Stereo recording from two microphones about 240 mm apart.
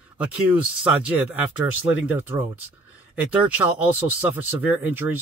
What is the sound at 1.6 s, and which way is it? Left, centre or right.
Speech, centre.